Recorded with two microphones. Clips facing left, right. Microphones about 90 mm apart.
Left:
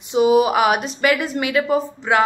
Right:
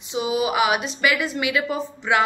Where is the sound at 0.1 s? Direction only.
50° left (ahead or behind).